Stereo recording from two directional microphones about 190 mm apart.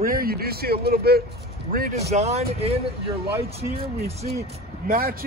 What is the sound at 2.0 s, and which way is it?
Speech, 35° right (ahead or behind).